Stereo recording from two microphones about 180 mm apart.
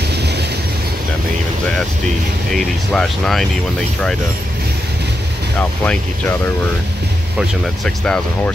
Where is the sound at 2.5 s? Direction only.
Centre (ahead or behind).